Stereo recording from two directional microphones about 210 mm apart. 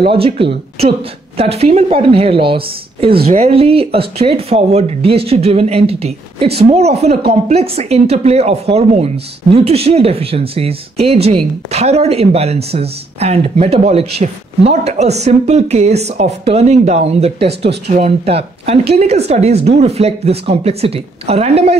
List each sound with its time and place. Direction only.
0.1 s speech: 25° right (ahead or behind)